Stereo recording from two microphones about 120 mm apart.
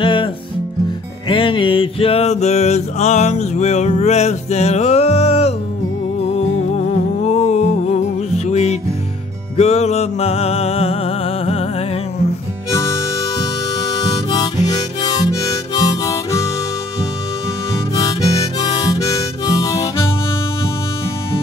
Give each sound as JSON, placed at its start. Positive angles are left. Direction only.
{"t": 0.0, "sound": "music", "side_deg": 45}
{"t": 1.3, "sound": "music", "side_deg": 45}
{"t": 12.7, "sound": "harmonica", "side_deg": 25}
{"t": 17.9, "sound": "harmonica", "side_deg": 35}